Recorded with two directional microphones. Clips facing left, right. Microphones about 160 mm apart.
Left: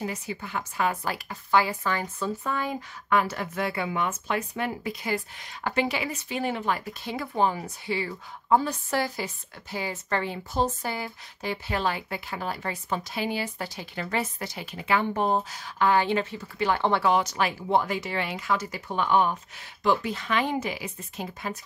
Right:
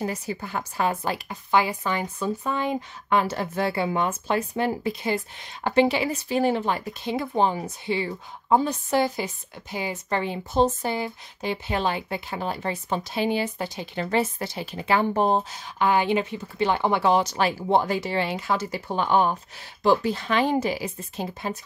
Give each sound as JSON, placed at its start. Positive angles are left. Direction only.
{"t": 0.0, "sound": "speech", "side_deg": -40}